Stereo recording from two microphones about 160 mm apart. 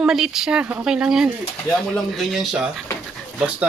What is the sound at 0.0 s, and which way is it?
Speech, 5° right (ahead or behind).